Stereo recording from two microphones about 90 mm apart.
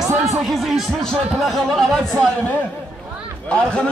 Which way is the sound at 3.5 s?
10° left (ahead or behind).